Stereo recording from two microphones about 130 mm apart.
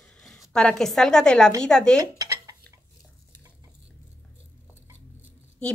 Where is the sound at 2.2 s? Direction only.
25° right (ahead or behind).